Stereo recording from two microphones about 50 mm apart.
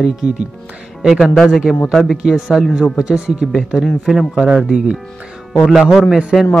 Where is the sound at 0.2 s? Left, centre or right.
Right.